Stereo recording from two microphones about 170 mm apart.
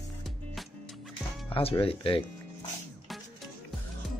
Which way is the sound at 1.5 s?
35° left (ahead or behind).